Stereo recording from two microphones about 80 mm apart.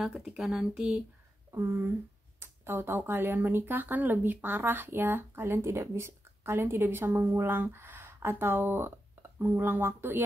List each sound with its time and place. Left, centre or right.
0.0 s speech: centre
1.5 s speech: right